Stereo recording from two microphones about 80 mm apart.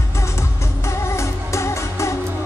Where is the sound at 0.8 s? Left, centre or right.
Left.